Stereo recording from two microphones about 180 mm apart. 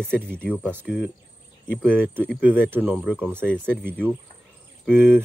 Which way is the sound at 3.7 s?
5° left (ahead or behind).